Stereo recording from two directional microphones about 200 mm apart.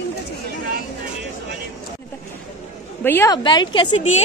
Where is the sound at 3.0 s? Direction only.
10° left (ahead or behind).